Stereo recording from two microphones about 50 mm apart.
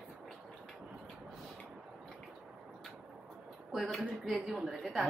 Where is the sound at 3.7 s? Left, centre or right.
Centre.